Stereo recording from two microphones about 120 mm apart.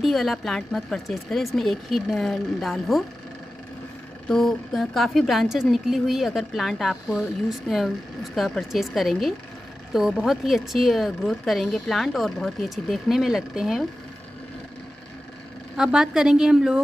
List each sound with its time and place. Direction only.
0.0 s a woman's voice: centre (ahead or behind)
4.3 s a woman's voice: 5° left (ahead or behind)
15.7 s a woman's voice: 5° right (ahead or behind)